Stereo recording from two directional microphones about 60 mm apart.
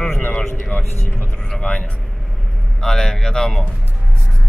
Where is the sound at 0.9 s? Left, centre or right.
Left.